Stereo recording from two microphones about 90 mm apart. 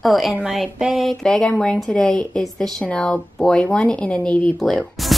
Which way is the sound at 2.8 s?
10° left (ahead or behind).